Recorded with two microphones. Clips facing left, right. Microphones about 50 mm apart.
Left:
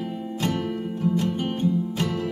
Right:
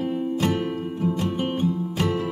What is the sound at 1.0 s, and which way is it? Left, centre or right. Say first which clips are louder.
Music: left 1 dB; centre.